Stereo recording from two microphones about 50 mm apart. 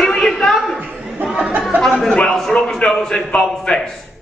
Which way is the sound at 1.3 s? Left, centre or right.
Right.